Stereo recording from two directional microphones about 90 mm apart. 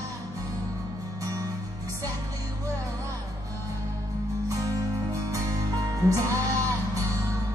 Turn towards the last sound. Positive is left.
turn(degrees=-35)  # may be behind; listen again after turning